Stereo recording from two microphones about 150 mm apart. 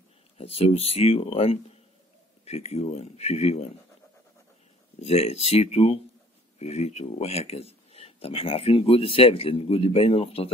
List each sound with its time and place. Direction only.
0.4 s speech: 40° left (ahead or behind)
5.0 s speech: 45° left (ahead or behind)